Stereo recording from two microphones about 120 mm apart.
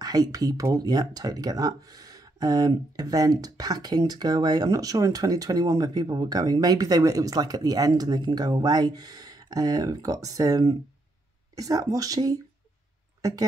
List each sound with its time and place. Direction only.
0.0 s speech: 30° right (ahead or behind)